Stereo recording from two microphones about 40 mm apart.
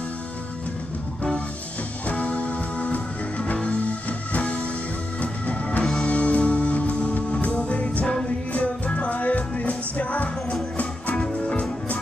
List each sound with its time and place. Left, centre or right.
2.0 s music: left